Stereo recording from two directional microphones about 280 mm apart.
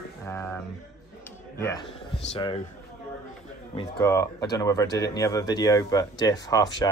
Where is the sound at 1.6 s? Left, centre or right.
Centre.